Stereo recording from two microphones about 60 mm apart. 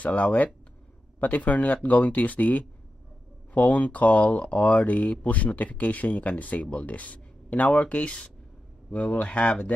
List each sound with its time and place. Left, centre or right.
0.0 s speech: left